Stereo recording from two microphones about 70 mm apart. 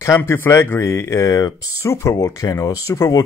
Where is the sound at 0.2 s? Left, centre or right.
Left.